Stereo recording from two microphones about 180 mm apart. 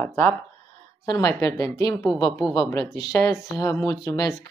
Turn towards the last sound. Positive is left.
turn(degrees=20)  # may be behind; listen again after turning